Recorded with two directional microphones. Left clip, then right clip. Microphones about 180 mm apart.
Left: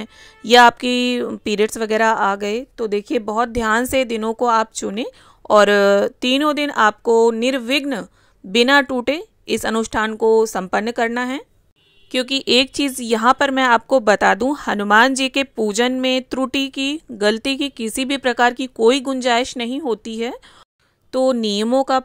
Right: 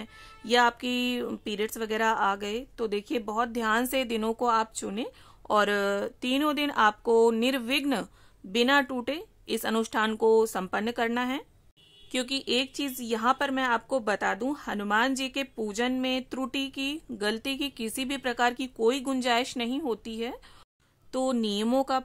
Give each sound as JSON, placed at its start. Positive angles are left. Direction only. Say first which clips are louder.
{"t": 0.0, "sound": "speech", "louder": "left 10 dB", "side_deg": 40}
{"t": 8.5, "sound": "speech", "louder": "left 10 dB", "side_deg": 35}